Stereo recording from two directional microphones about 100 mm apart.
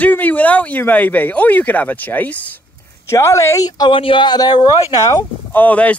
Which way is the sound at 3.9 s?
55° left (ahead or behind).